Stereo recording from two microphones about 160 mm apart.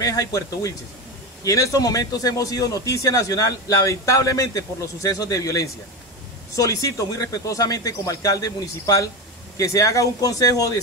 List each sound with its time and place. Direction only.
0.0 s a man's voice: 20° left (ahead or behind)